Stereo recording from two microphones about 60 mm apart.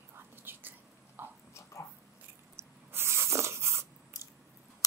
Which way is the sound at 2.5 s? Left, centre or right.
Right.